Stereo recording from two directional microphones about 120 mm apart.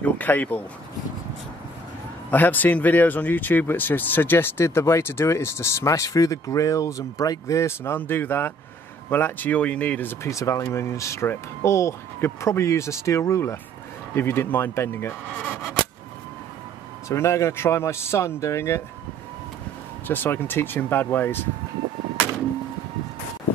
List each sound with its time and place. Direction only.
0.0 s speech: 15° left (ahead or behind)
2.3 s speech: 15° left (ahead or behind)
17.1 s speech: 25° left (ahead or behind)
20.1 s speech: 15° left (ahead or behind)